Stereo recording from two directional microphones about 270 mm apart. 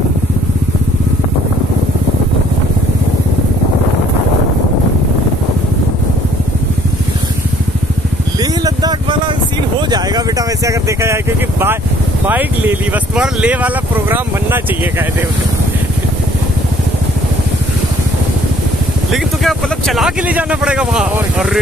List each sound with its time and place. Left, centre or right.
8.4 s vehicle: centre
12.3 s speech: centre
19.1 s speech: centre